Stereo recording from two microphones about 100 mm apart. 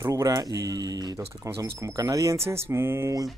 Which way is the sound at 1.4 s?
30° right (ahead or behind).